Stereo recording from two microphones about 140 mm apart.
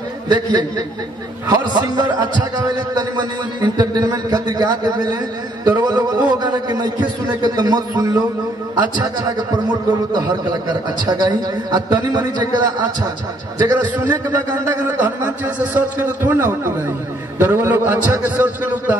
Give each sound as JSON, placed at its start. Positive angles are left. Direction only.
{"t": 0.3, "sound": "a man's voice", "side_deg": -30}
{"t": 14.9, "sound": "a man's voice", "side_deg": -10}